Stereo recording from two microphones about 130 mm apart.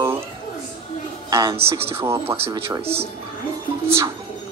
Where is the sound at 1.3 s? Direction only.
25° right (ahead or behind).